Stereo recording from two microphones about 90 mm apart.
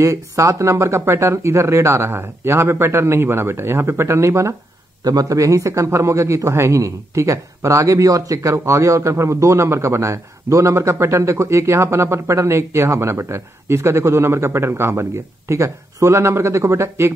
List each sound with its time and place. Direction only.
0.0 s speech: 35° right (ahead or behind)
5.0 s speech: 40° right (ahead or behind)